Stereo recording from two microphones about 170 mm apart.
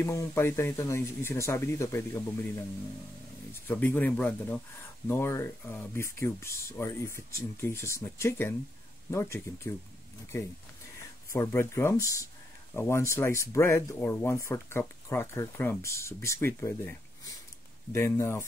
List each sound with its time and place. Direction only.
0.0 s speech: 15° left (ahead or behind)
3.6 s speech: 10° left (ahead or behind)
11.3 s speech: 15° left (ahead or behind)